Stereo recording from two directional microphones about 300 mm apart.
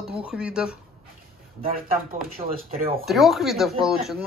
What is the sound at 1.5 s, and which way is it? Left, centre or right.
Speech, right.